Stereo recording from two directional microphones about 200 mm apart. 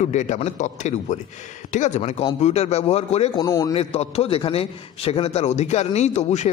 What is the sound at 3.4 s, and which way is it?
Speech, 15° left (ahead or behind).